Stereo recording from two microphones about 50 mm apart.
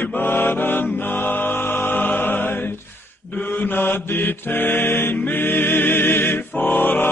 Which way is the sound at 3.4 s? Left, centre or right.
Left.